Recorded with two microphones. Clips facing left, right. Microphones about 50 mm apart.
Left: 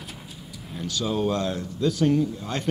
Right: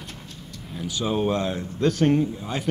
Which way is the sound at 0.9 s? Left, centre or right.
Right.